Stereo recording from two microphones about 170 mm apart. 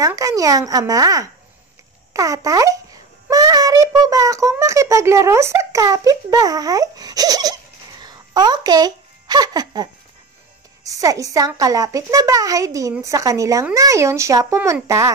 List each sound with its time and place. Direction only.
0.0 s speech: 20° right (ahead or behind)
8.0 s a sound: 25° right (ahead or behind)
10.8 s a child's voice: 20° right (ahead or behind)